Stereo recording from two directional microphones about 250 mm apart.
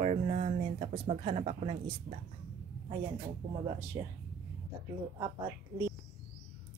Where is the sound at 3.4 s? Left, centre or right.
Centre.